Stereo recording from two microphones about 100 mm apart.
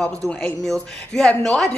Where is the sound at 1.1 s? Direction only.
5° left (ahead or behind).